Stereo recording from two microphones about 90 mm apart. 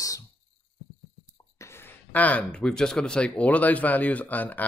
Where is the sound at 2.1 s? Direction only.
15° left (ahead or behind).